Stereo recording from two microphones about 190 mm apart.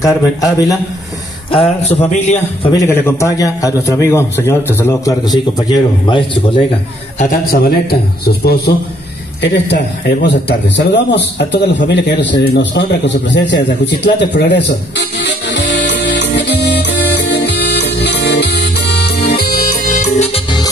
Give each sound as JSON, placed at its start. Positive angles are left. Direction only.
{"t": 0.0, "sound": "a man's voice", "side_deg": 20}
{"t": 1.5, "sound": "a man's voice", "side_deg": 30}
{"t": 2.8, "sound": "a man's voice", "side_deg": 15}
{"t": 7.2, "sound": "a man's voice", "side_deg": 50}
{"t": 11.0, "sound": "a sound", "side_deg": 60}